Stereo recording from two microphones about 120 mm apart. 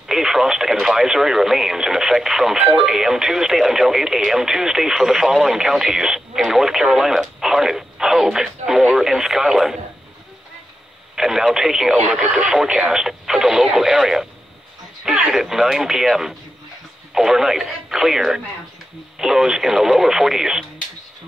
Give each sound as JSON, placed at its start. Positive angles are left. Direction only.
{"t": 0.1, "sound": "speech", "side_deg": -5}
{"t": 11.1, "sound": "speech", "side_deg": -5}